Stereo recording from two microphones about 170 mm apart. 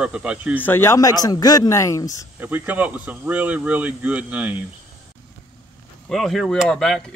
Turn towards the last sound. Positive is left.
turn(degrees=5)  # may be behind; listen again after turning